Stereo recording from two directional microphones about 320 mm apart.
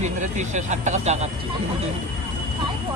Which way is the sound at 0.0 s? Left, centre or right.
Right.